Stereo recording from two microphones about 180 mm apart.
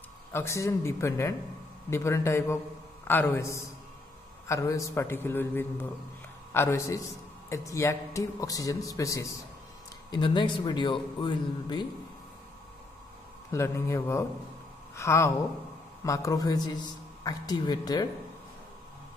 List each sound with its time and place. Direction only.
0.3 s a man's voice: 15° left (ahead or behind)
13.5 s a man's voice: 15° left (ahead or behind)